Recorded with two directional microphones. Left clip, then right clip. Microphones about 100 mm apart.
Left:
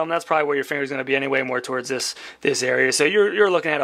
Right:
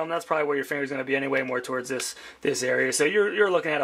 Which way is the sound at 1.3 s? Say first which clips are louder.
Left 4 dB; 40° left (ahead or behind).